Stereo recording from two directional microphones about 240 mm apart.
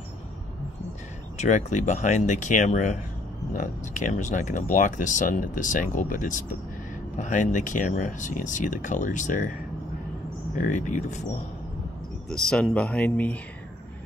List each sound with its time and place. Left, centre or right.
1.4 s speech: left
10.7 s speech: left
12.3 s speech: centre